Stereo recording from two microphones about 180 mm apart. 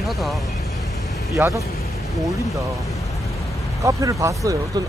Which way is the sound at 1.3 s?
15° right (ahead or behind).